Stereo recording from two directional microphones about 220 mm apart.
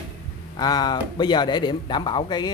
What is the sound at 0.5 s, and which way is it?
Speech, 20° left (ahead or behind).